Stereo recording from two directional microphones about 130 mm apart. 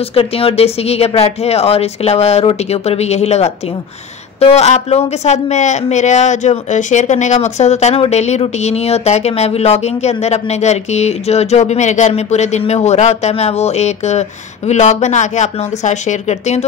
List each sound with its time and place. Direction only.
0.1 s speech: 50° left (ahead or behind)